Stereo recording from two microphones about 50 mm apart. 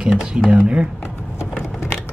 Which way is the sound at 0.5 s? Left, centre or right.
Right.